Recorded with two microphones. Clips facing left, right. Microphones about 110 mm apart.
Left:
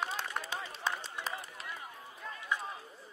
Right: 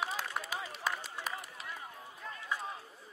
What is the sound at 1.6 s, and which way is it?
Run, centre (ahead or behind).